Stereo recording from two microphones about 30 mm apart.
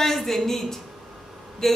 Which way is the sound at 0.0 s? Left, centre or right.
Centre.